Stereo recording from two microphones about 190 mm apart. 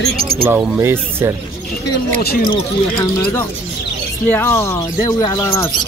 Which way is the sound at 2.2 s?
55° left (ahead or behind).